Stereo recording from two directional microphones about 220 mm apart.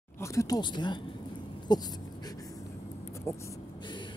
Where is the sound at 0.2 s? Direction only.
15° left (ahead or behind).